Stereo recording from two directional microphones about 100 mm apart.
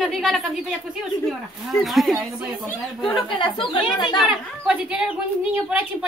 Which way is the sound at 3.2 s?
60° left (ahead or behind).